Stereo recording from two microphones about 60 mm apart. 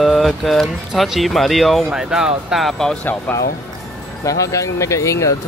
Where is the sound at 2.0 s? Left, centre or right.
Centre.